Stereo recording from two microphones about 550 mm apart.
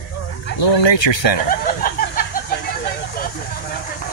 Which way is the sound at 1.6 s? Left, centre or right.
Centre.